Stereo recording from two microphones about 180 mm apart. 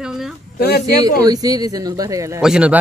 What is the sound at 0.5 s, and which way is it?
Speech, 65° left (ahead or behind).